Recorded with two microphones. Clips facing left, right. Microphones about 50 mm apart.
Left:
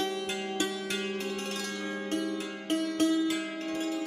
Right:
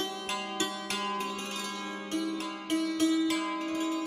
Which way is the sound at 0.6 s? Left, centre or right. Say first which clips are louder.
Left 1 dB; right.